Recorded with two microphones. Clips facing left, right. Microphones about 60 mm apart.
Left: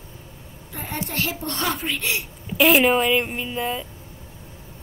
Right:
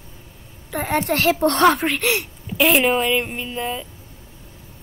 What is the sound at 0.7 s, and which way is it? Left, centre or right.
A child's voice, right.